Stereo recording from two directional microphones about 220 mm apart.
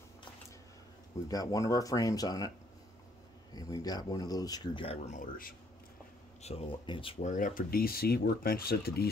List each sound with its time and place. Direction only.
1.3 s speech: 15° left (ahead or behind)
3.5 s speech: 15° left (ahead or behind); by 5.5 s 35° left (ahead or behind)
6.4 s speech: 25° left (ahead or behind); by 9.1 s 45° left (ahead or behind)